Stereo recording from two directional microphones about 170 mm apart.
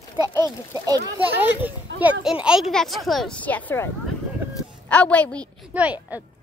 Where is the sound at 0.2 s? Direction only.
25° right (ahead or behind).